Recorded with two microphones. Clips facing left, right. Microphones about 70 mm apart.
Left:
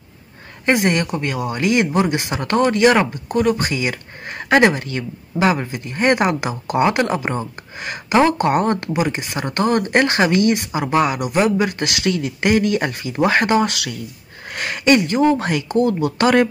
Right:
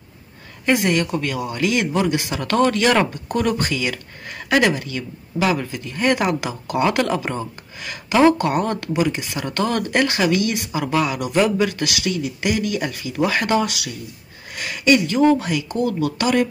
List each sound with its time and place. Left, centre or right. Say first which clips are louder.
0.7 s speech: left 1 dB; left; by 3.7 s centre
3.7 s speech: left 1 dB; left
4.3 s speech: left 4 dB; left
5.5 s speech: left 2 dB; left
11.1 s speech: even; centre
11.8 s speech: left 2 dB; left
12.1 s speech: left 7 dB; left
13.7 s speech: left 3 dB; left